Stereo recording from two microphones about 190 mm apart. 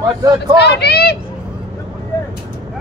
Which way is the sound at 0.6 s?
60° left (ahead or behind).